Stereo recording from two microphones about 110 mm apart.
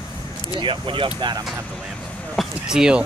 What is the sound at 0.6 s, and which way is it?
Speech, 50° right (ahead or behind).